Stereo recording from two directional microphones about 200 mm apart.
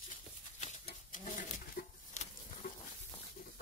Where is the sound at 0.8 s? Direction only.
40° left (ahead or behind).